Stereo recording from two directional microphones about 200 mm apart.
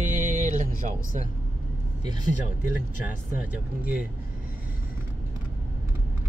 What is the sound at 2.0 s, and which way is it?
Speech, 20° right (ahead or behind).